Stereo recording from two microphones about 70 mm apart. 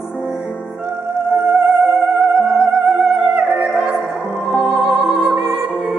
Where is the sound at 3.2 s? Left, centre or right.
Centre.